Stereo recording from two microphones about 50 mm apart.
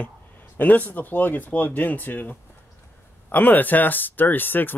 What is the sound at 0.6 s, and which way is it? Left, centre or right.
Speech, left.